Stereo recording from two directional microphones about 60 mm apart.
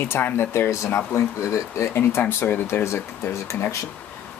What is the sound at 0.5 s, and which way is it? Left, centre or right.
Speech, left.